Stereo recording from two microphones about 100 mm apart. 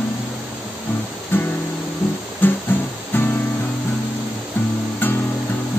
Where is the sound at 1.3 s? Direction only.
20° left (ahead or behind).